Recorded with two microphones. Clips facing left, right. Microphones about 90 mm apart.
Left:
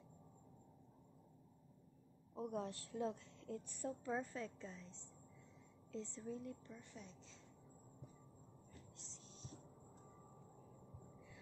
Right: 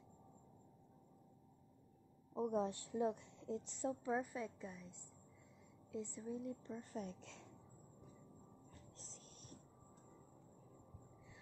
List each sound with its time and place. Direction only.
2.3 s a woman's voice: 20° right (ahead or behind)
6.8 s speech: 45° right (ahead or behind); by 7.4 s 65° right (ahead or behind)
8.9 s a sound: 45° right (ahead or behind)